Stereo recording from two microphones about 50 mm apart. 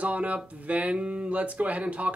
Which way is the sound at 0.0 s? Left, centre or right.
Right.